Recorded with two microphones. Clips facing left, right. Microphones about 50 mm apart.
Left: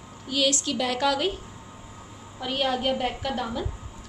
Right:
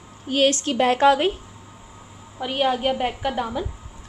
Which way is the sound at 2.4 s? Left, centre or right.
Centre.